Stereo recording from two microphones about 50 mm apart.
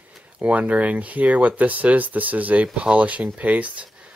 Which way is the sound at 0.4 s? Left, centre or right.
Right.